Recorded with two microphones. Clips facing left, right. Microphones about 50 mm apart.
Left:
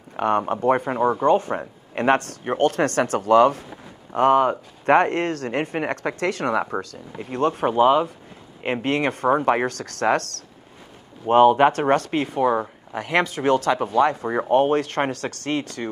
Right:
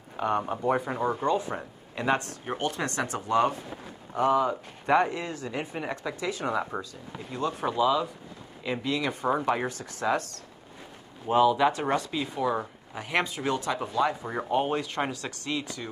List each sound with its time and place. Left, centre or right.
0.5 s speech: left
2.4 s speech: left
2.7 s speech: left
11.2 s speech: left